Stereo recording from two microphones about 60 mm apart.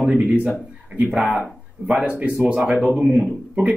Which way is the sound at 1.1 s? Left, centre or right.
Centre.